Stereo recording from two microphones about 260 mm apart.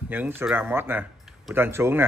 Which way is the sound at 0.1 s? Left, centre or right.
Centre.